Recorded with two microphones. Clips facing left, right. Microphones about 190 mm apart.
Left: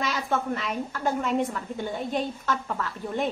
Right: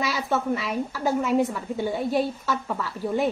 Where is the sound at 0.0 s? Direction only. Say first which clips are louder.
Right 2 dB; 5° right (ahead or behind).